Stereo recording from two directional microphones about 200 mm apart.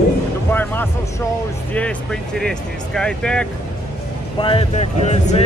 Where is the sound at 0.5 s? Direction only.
10° left (ahead or behind).